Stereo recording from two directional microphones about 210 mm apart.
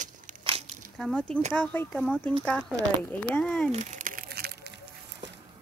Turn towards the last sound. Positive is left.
turn(degrees=-50)  # may be behind; listen again after turning